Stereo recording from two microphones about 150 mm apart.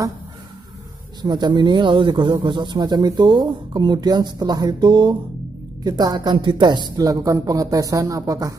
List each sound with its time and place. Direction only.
1.2 s a man's voice: 30° right (ahead or behind)